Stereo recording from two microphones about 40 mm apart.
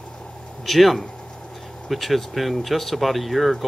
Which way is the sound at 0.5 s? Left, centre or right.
Centre.